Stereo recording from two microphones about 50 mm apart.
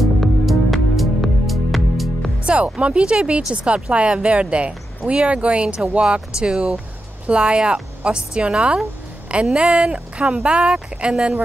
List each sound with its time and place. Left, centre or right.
0.0 s music: centre
2.4 s music: right
2.8 s speech: right